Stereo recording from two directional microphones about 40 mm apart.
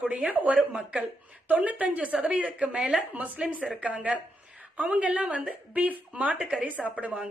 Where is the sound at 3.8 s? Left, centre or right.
Right.